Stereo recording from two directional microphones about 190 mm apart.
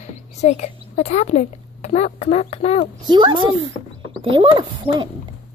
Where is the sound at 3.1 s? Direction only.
25° right (ahead or behind).